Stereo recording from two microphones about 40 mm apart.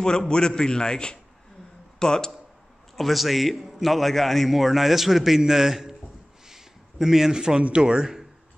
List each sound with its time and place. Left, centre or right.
0.0 s a man's voice: centre
3.0 s a man's voice: centre
6.4 s a sound: centre
7.6 s speech: right